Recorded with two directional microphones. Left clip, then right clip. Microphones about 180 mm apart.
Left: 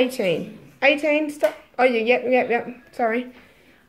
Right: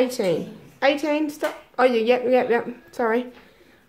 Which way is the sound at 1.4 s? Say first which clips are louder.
Even; 15° right (ahead or behind).